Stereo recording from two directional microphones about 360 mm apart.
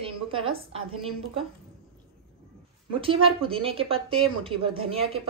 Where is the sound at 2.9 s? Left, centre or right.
Centre.